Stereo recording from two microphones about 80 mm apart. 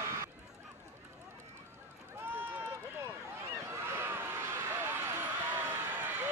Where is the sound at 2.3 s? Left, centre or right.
Right.